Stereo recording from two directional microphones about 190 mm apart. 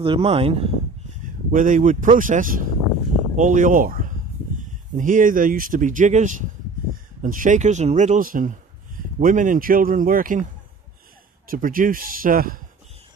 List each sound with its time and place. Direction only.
0.0 s speech: 30° right (ahead or behind)
1.2 s speech: 45° right (ahead or behind)